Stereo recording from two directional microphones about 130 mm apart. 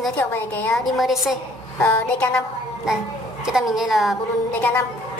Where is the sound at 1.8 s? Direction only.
10° left (ahead or behind).